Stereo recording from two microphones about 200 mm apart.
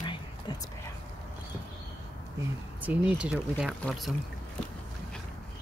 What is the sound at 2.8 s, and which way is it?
Speech, 5° right (ahead or behind).